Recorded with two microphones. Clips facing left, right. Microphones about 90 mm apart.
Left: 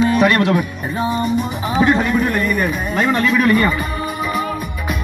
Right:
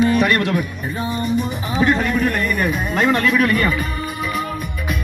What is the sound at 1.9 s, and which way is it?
A man's voice, 5° left (ahead or behind).